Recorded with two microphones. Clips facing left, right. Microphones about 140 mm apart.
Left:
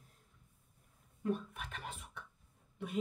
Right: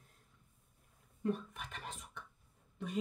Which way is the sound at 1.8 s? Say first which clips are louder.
Left 1 dB; 5° left (ahead or behind).